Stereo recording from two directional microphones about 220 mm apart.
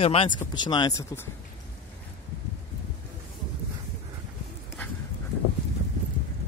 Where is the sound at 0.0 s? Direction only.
25° left (ahead or behind).